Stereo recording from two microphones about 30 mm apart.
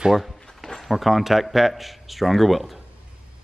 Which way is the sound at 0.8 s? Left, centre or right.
Centre.